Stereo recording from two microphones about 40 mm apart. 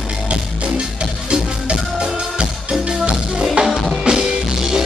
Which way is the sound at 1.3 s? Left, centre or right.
Right.